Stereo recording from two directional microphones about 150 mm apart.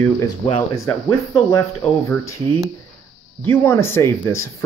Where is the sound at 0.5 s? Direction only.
25° left (ahead or behind).